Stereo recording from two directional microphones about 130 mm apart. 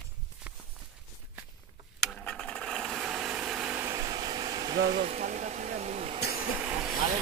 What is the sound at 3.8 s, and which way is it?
Engine, 25° right (ahead or behind).